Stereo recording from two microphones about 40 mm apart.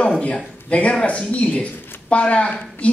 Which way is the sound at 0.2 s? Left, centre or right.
Left.